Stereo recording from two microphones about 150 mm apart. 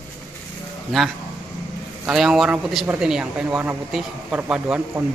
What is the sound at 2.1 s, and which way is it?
Speech, 5° right (ahead or behind).